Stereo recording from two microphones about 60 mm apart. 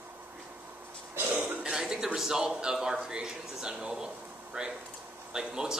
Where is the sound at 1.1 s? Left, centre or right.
Right.